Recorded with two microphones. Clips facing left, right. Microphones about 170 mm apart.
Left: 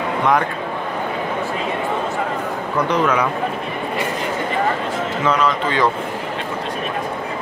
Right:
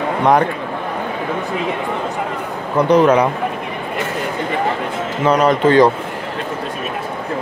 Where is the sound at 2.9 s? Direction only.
35° right (ahead or behind).